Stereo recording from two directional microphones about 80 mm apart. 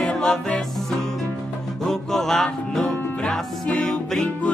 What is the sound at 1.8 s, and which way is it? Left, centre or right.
Music, centre.